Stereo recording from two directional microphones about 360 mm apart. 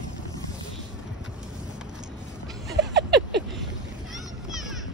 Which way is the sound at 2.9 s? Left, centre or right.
Right.